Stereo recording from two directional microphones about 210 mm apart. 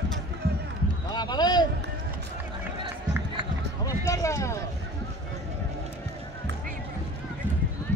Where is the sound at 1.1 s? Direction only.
20° left (ahead or behind).